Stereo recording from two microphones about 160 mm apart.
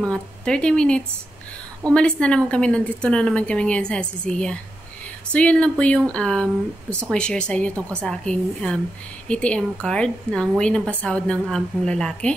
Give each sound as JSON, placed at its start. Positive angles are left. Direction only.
{"t": 0.0, "sound": "a woman's voice", "side_deg": 5}